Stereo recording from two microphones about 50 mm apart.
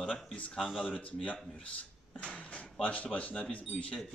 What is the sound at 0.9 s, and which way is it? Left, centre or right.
Speech, left.